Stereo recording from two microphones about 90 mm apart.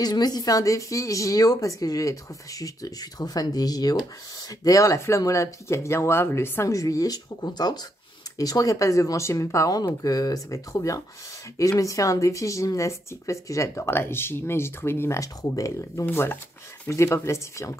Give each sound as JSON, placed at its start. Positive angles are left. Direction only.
{"t": 0.0, "sound": "speech", "side_deg": 50}
{"t": 6.7, "sound": "speech", "side_deg": 40}
{"t": 16.1, "sound": "speech", "side_deg": 25}